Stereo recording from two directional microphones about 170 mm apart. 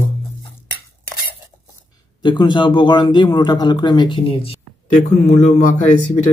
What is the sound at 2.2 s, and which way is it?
A man's voice, 25° left (ahead or behind).